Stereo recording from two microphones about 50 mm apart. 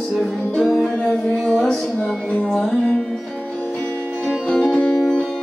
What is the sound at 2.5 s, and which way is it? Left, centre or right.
Speech, centre.